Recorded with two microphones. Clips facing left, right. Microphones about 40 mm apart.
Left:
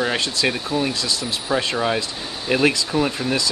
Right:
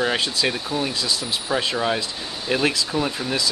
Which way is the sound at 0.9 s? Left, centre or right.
Centre.